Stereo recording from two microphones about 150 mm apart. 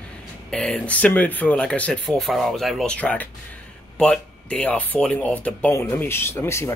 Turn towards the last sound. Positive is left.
turn(degrees=15)  # may be behind; listen again after turning